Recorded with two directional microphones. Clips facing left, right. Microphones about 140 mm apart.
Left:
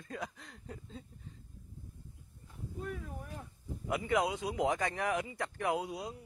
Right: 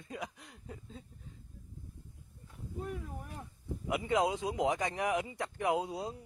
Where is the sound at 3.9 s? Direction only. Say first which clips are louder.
Right 1 dB; 20° right (ahead or behind).